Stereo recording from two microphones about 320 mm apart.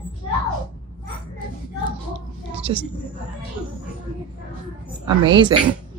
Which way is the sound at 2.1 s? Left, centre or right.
Centre.